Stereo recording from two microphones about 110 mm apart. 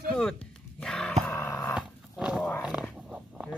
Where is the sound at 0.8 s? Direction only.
5° left (ahead or behind).